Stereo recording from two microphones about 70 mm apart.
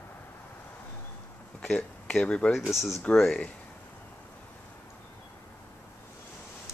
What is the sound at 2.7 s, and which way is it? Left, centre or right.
Speech, centre.